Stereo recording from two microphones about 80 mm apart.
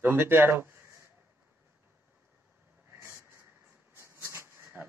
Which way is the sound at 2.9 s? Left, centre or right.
Right.